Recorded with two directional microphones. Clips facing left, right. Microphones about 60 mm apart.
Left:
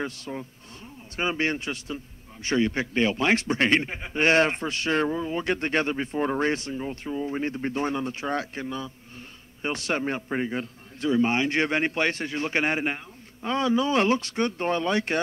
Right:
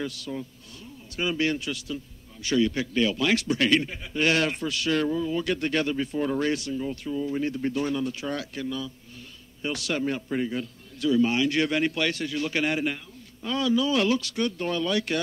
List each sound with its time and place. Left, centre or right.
0.0 s a man's voice: left